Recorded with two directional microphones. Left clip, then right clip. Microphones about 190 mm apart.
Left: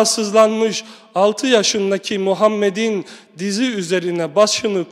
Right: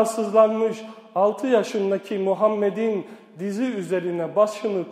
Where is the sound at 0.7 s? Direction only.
15° left (ahead or behind).